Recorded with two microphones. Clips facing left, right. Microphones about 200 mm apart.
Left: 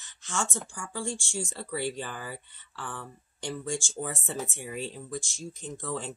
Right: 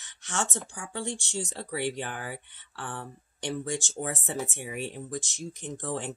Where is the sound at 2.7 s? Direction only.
60° right (ahead or behind).